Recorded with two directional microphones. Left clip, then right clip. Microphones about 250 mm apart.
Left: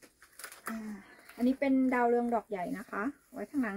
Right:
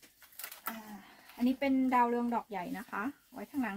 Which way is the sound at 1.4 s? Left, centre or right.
Right.